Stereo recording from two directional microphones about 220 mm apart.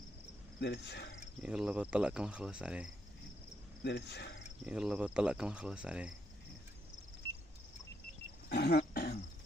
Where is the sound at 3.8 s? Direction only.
50° left (ahead or behind).